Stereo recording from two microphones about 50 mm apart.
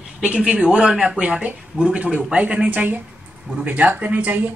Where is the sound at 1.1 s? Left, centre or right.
Right.